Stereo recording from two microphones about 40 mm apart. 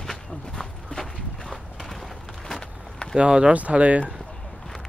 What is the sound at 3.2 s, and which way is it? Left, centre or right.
Speech, right.